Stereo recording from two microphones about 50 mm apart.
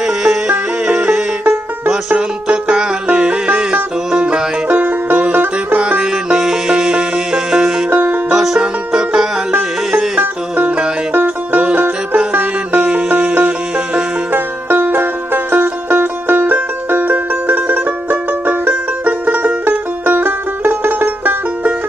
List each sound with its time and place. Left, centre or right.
0.0 s music: centre
1.9 s music: centre
4.6 s music: right
5.8 s music: centre
7.9 s music: right
8.4 s music: centre
10.1 s music: right